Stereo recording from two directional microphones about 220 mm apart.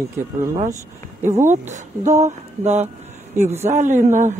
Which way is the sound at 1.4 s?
35° right (ahead or behind).